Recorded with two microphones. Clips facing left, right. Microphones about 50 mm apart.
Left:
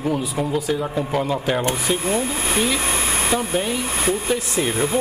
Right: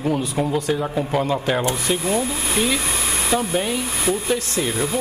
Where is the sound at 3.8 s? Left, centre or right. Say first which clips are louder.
Left 1 dB; left.